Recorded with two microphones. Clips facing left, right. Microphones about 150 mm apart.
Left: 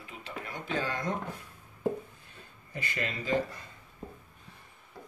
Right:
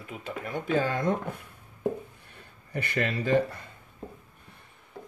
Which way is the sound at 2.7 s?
60° right (ahead or behind).